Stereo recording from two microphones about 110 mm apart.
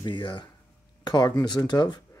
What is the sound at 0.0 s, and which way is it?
Speech, 45° left (ahead or behind).